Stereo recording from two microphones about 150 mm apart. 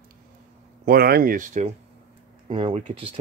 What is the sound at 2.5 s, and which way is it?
Speech, 35° right (ahead or behind).